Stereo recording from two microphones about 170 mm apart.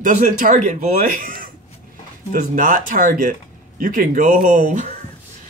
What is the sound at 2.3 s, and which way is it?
Speech, 50° right (ahead or behind).